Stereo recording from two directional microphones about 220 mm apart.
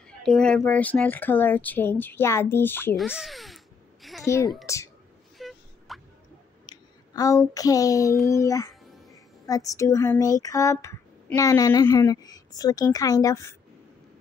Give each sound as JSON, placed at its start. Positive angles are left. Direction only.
{"t": 0.2, "sound": "speech", "side_deg": 5}
{"t": 3.1, "sound": "a sound", "side_deg": 0}
{"t": 4.7, "sound": "speech", "side_deg": 15}
{"t": 5.4, "sound": "plop", "side_deg": 0}
{"t": 5.9, "sound": "drip", "side_deg": 0}
{"t": 6.6, "sound": "a sound", "side_deg": 20}
{"t": 8.4, "sound": "speech", "side_deg": 15}